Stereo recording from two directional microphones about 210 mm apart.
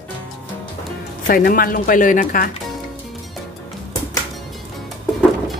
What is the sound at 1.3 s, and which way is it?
Speech, 45° left (ahead or behind).